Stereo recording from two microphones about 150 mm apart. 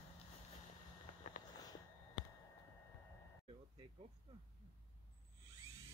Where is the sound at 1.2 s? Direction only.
60° left (ahead or behind).